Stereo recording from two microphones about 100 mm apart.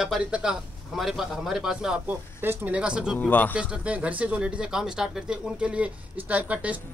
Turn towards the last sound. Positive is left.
turn(degrees=-15)  # may be behind; listen again after turning